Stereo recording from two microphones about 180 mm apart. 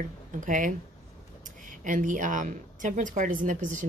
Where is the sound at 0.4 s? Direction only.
45° right (ahead or behind).